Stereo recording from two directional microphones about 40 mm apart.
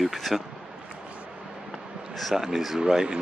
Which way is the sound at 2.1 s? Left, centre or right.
Centre.